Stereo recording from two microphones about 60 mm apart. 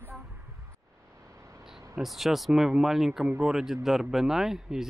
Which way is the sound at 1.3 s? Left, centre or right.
Right.